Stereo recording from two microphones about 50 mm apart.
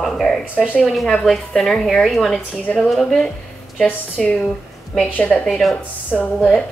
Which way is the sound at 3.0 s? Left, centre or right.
Centre.